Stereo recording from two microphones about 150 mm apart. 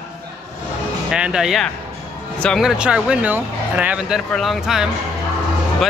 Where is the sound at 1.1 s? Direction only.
5° right (ahead or behind).